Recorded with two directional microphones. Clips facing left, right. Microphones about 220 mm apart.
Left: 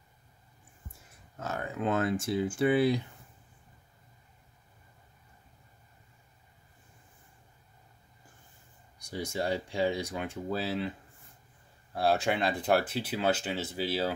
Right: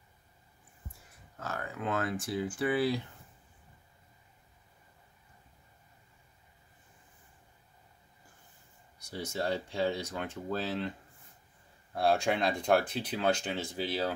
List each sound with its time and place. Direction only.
1.4 s speech: 20° left (ahead or behind)
9.0 s speech: 10° left (ahead or behind)
11.9 s speech: 5° left (ahead or behind)